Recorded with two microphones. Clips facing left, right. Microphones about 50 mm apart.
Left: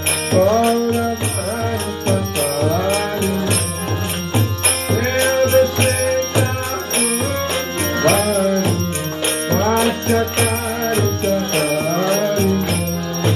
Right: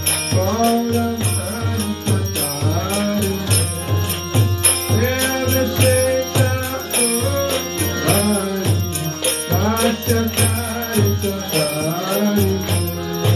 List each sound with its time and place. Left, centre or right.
0.3 s music: centre
5.2 s music: centre
8.1 s music: centre
9.5 s music: centre
10.0 s jingle bell: left
11.5 s music: left
12.2 s jingle bell: centre